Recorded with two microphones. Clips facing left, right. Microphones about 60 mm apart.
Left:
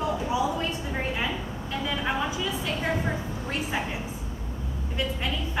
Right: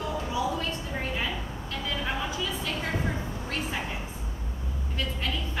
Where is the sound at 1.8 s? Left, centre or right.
Centre.